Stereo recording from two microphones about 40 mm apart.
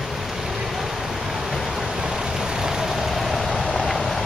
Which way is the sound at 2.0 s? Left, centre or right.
Centre.